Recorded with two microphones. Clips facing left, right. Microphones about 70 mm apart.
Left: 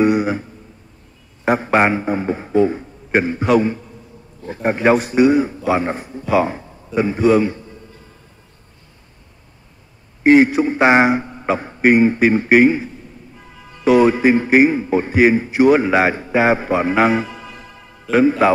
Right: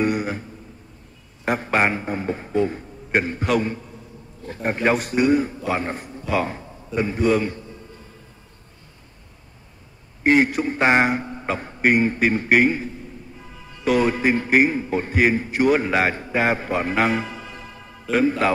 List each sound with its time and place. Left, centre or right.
0.0 s a sound: centre
1.4 s a man's voice: centre
10.2 s a man's voice: centre
13.8 s a man's voice: centre